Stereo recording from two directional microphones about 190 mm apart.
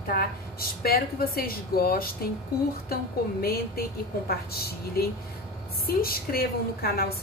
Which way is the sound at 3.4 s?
55° left (ahead or behind).